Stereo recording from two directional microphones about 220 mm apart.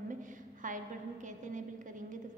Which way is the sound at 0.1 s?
35° right (ahead or behind).